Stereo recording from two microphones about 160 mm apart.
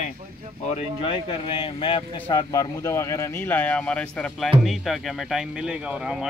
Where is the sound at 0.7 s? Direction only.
40° left (ahead or behind).